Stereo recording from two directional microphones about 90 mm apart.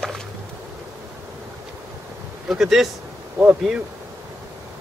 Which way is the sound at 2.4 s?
5° right (ahead or behind).